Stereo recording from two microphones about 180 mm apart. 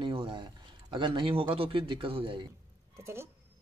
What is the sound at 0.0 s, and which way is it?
A man's voice, 30° right (ahead or behind).